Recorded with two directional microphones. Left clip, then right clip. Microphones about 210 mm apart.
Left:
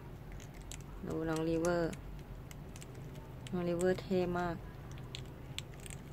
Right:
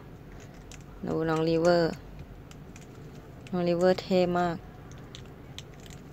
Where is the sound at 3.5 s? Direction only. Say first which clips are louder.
Right 9 dB; 25° right (ahead or behind).